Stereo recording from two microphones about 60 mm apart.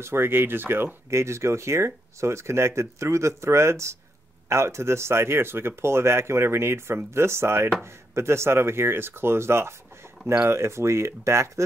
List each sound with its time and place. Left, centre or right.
0.0 s speech: right